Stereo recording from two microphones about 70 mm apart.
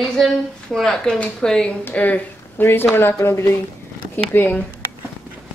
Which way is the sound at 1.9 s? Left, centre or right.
Left.